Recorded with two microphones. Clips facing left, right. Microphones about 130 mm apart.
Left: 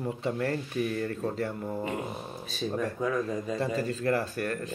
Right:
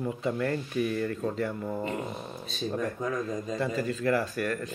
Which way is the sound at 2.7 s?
35° left (ahead or behind).